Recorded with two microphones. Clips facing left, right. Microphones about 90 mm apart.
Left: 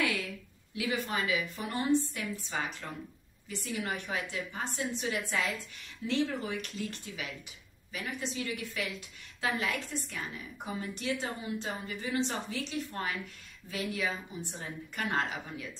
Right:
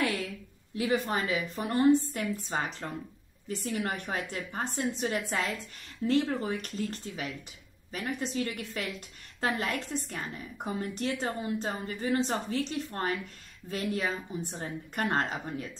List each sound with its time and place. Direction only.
0.7 s a woman's voice: 40° right (ahead or behind)